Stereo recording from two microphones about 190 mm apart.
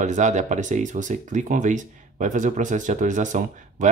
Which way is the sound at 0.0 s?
40° right (ahead or behind).